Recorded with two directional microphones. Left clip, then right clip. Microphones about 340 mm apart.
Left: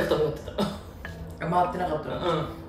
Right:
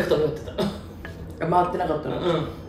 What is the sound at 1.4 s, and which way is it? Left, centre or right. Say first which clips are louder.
Speech: right 4 dB; centre.